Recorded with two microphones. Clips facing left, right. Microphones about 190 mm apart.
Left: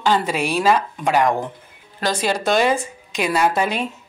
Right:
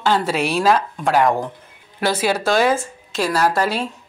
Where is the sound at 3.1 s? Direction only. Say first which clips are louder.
Even; 15° left (ahead or behind).